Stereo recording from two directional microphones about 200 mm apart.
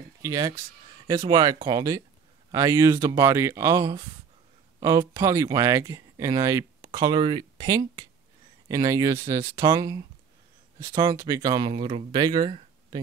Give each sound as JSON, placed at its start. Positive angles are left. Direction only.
{"t": 0.2, "sound": "speech", "side_deg": -15}